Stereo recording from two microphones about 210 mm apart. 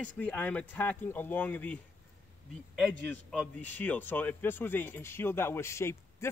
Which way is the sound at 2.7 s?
5° left (ahead or behind).